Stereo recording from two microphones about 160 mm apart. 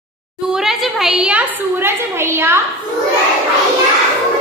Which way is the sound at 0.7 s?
5° right (ahead or behind).